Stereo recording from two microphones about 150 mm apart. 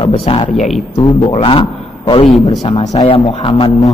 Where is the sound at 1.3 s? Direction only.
35° left (ahead or behind).